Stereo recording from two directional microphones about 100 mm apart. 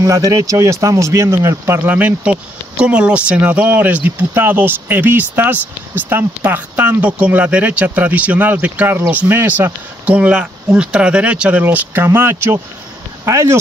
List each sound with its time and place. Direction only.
0.0 s speech: 35° right (ahead or behind)